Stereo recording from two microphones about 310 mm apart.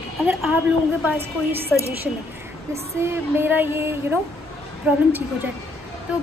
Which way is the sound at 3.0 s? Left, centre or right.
Centre.